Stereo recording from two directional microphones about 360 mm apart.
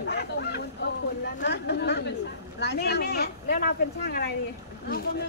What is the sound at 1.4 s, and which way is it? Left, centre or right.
Speech, left.